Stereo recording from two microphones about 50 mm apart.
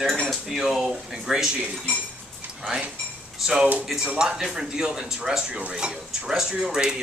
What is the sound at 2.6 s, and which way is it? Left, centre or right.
Speech, centre.